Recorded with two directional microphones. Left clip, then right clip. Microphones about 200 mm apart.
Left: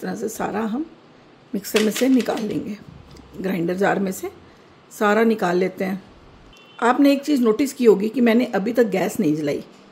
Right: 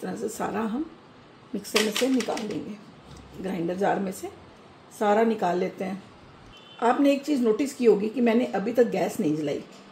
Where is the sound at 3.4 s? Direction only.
30° left (ahead or behind).